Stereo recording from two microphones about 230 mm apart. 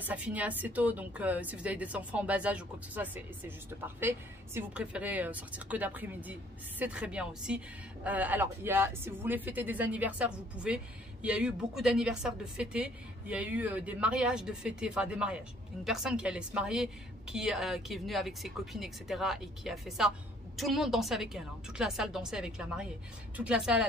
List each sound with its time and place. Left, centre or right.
0.0 s a woman's voice: centre